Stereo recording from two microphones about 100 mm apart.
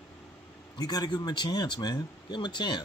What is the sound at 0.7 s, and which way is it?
Speech, 40° left (ahead or behind).